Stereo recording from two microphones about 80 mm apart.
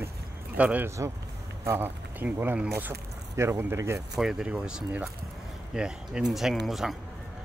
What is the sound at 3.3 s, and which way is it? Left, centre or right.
Speech, right.